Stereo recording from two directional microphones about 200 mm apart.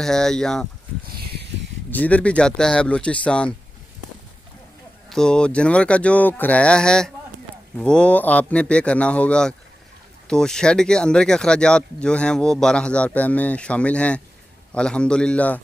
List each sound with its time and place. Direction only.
0.0 s speech: centre (ahead or behind)
1.0 s a sound: 50° right (ahead or behind)
1.9 s speech: 5° left (ahead or behind)
5.1 s speech: 5° left (ahead or behind)